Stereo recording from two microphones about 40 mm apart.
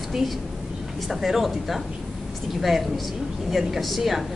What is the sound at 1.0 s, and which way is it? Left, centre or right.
Speech, centre.